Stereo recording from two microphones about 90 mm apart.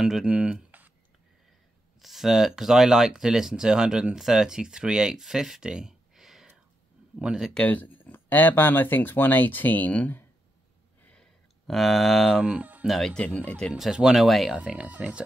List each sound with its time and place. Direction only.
0.0 s a sound: 5° right (ahead or behind)
2.0 s speech: centre (ahead or behind)
7.5 s speech: 15° left (ahead or behind)
11.1 s a sound: 5° left (ahead or behind); by 12.8 s 15° right (ahead or behind)
12.8 s speech: centre (ahead or behind)
13.7 s speech: 5° right (ahead or behind)
14.6 s speech: 10° right (ahead or behind)